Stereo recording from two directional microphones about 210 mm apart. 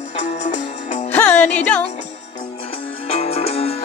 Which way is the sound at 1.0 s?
5° left (ahead or behind).